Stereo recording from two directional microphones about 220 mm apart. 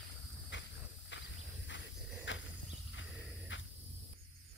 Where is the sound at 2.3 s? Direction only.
55° left (ahead or behind).